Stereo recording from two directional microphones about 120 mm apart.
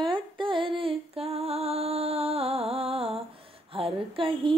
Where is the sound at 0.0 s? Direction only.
45° right (ahead or behind).